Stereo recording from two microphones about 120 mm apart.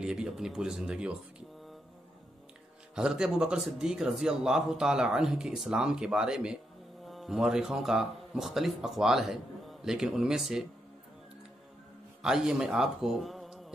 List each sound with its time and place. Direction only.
0.0 s speech: 5° right (ahead or behind)
3.0 s speech: 5° right (ahead or behind)
12.2 s a man's voice: 5° right (ahead or behind)